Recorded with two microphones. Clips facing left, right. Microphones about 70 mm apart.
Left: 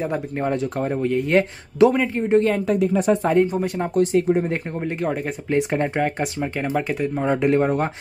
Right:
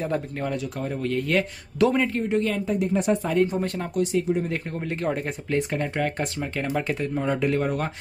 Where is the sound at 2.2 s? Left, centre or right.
Left.